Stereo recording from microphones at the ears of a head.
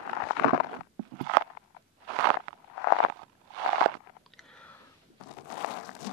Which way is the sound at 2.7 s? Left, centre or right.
Left.